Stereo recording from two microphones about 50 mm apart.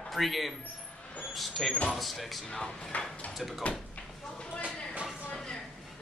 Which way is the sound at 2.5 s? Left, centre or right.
Centre.